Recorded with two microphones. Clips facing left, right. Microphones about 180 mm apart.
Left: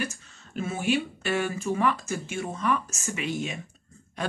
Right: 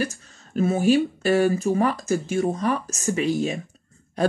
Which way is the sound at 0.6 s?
40° right (ahead or behind).